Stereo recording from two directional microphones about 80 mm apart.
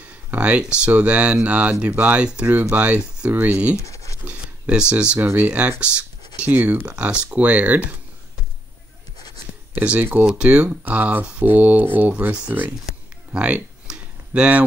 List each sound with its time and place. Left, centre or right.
0.3 s speech: centre
3.7 s scratch: left
4.2 s speech: centre
9.7 s speech: right
10.3 s speech: centre
12.8 s a sound: centre